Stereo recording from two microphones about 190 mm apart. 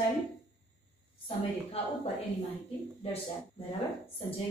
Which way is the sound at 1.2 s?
30° left (ahead or behind).